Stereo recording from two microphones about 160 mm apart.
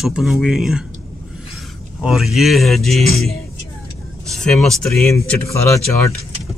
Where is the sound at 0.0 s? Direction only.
Centre (ahead or behind).